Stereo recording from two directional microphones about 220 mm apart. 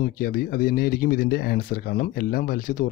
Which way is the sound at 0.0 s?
40° left (ahead or behind).